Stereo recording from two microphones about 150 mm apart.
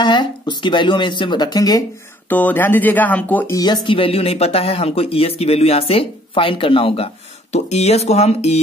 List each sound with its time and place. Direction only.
0.0 s speech: 30° left (ahead or behind)
2.2 s speech: 10° left (ahead or behind)
3.5 s speech: 30° left (ahead or behind); by 8.5 s 45° left (ahead or behind)